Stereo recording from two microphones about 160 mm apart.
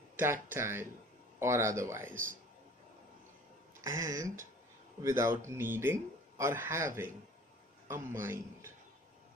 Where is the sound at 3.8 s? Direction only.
20° right (ahead or behind).